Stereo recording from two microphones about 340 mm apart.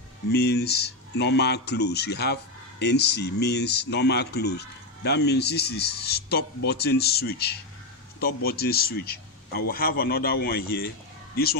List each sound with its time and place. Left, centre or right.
0.3 s speech: left